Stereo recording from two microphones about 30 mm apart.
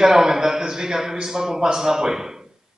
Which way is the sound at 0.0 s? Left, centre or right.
Centre.